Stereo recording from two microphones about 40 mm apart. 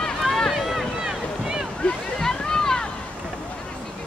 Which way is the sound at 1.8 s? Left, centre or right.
Left.